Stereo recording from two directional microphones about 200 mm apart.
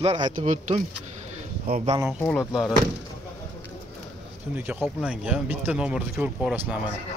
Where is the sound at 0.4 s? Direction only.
40° right (ahead or behind).